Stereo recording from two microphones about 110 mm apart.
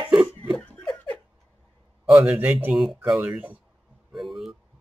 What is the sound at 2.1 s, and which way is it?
Speech, 15° right (ahead or behind).